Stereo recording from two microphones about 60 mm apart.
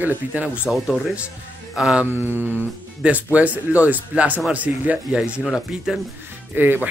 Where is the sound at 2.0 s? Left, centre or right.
Left.